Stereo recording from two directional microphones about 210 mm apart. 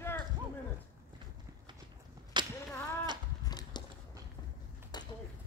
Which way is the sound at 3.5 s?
20° left (ahead or behind).